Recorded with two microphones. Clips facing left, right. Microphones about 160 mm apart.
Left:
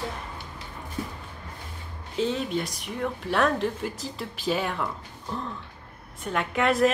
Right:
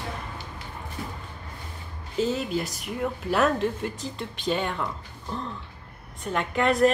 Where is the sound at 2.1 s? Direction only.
5° right (ahead or behind).